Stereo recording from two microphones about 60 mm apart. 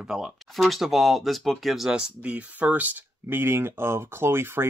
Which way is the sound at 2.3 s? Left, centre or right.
Right.